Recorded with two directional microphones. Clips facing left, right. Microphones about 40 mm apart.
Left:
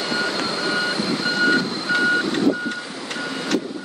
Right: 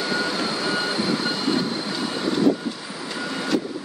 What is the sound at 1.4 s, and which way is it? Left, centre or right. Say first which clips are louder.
Reversing beeps: left 4 dB; left.